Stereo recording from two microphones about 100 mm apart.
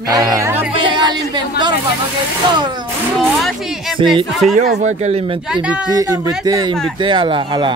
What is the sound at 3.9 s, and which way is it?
Speech, 55° right (ahead or behind).